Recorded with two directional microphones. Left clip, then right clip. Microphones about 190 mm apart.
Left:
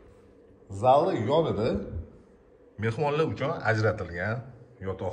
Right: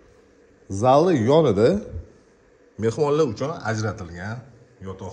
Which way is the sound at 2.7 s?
20° right (ahead or behind).